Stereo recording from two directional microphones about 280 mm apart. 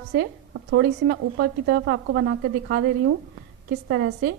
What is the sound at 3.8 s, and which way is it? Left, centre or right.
Speech, right.